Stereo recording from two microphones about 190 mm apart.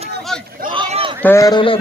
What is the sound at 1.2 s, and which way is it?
Speech, 15° left (ahead or behind).